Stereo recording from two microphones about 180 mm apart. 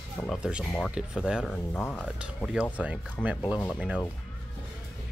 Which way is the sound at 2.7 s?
5° right (ahead or behind).